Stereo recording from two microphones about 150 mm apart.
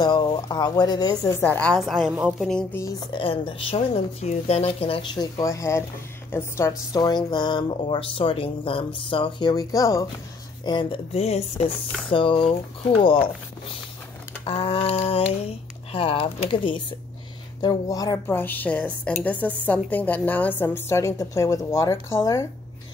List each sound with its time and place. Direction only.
0.0 s speech: 30° left (ahead or behind)
1.4 s a woman's voice: 10° left (ahead or behind)
2.7 s speech: 20° left (ahead or behind)
3.1 s speech: 35° left (ahead or behind)
14.4 s a woman's voice: 40° left (ahead or behind); by 22.5 s 20° left (ahead or behind)